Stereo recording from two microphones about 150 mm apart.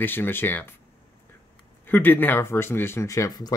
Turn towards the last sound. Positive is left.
turn(degrees=25)  # may be behind; listen again after turning